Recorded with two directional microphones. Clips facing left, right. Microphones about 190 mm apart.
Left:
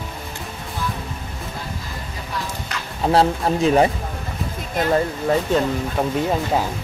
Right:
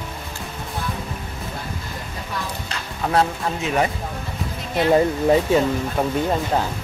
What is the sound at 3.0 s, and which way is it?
Speech, 30° left (ahead or behind).